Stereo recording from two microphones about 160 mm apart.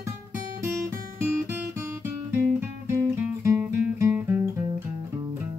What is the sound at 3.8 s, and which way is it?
Music, 10° right (ahead or behind).